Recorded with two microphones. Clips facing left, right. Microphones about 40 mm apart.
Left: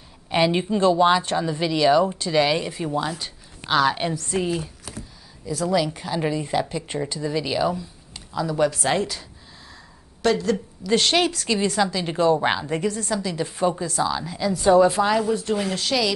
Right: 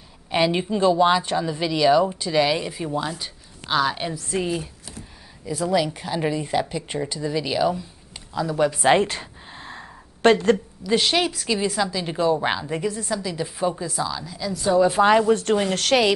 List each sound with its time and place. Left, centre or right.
0.3 s speech: centre
5.5 s speech: centre
8.8 s a sound: right
10.9 s speech: centre
12.6 s speech: centre
14.0 s a woman's voice: centre
14.5 s a woman's voice: centre
15.0 s speech: right
15.2 s speech: right